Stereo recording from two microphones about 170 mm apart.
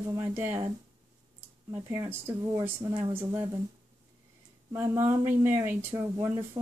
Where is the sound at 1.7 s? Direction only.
15° right (ahead or behind).